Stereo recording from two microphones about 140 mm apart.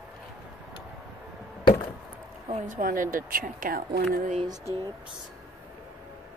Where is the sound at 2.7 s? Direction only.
75° right (ahead or behind).